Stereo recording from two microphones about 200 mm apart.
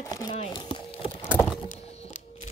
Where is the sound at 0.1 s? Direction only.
20° left (ahead or behind).